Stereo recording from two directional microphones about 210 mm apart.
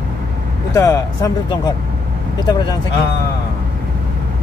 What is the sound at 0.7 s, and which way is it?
Speech, 15° left (ahead or behind).